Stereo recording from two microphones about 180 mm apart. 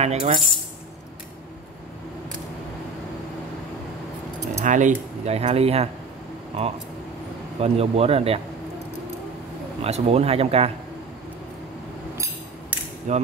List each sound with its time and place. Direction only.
0.0 s speech: 35° right (ahead or behind)
4.6 s speech: 45° right (ahead or behind)
9.8 s speech: 35° right (ahead or behind)
13.1 s speech: 40° right (ahead or behind)